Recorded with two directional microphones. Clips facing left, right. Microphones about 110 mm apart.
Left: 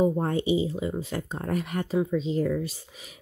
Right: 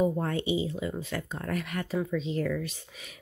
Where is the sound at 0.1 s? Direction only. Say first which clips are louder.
Left 4 dB; 20° left (ahead or behind).